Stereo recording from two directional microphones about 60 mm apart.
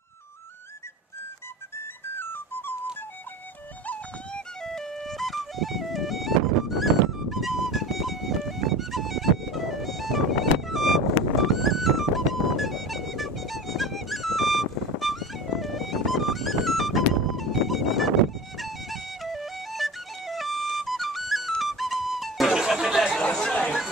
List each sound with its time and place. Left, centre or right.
2.1 s whistle: left
3.8 s music: left
4.6 s music: centre
23.2 s chatter: centre